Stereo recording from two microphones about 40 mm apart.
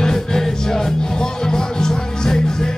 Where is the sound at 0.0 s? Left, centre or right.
Centre.